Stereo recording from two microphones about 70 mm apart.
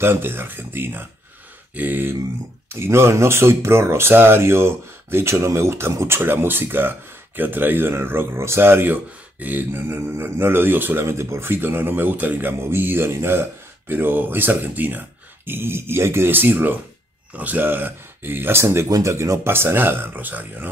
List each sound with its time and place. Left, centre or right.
0.0 s speech: right
2.7 s speech: right
11.1 s speech: right
18.9 s speech: right
19.5 s speech: right